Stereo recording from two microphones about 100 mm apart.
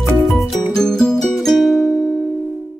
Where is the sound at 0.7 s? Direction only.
5° left (ahead or behind).